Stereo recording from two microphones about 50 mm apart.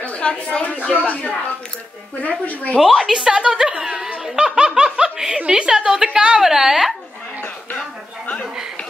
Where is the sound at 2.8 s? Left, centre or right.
Centre.